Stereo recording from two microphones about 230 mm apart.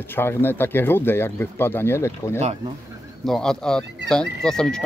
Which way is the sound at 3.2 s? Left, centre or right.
Centre.